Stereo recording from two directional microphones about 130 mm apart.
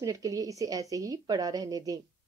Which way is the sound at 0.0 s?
25° right (ahead or behind).